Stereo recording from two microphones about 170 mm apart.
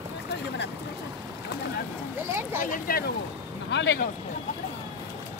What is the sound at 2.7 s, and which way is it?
Speech, 60° left (ahead or behind).